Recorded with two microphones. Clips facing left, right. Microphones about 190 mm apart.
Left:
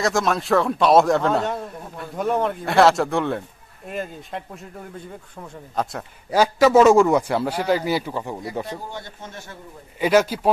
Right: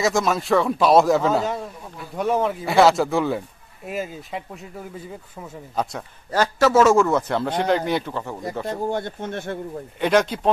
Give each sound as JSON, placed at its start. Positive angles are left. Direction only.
{"t": 0.0, "sound": "a man's voice", "side_deg": 0}
{"t": 6.3, "sound": "a man's voice", "side_deg": 10}
{"t": 8.6, "sound": "speech", "side_deg": -55}
{"t": 9.9, "sound": "a man's voice", "side_deg": 5}